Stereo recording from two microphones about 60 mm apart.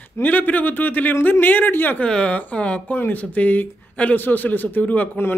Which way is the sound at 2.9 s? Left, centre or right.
Left.